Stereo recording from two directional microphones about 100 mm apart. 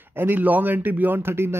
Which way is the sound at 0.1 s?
20° right (ahead or behind).